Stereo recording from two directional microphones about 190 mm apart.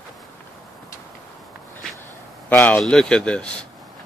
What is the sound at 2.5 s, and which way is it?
Speech, 5° left (ahead or behind).